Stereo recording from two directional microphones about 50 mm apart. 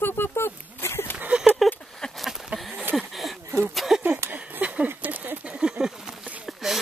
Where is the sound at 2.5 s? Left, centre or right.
Right.